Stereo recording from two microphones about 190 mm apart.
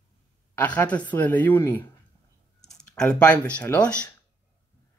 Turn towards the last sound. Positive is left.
turn(degrees=5)  # may be behind; listen again after turning